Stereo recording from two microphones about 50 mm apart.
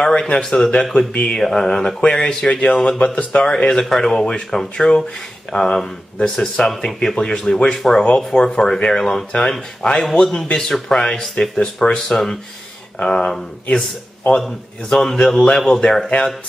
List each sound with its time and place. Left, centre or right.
0.0 s speech: centre
14.9 s speech: centre